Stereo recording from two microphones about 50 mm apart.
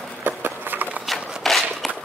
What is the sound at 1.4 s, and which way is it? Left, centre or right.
Walk, centre.